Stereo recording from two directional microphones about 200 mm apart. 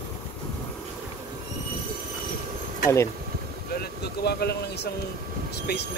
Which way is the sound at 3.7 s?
55° left (ahead or behind).